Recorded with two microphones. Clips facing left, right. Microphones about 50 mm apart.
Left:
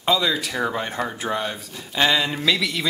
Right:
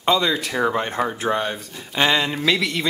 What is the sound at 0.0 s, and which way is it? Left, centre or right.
Speech, centre.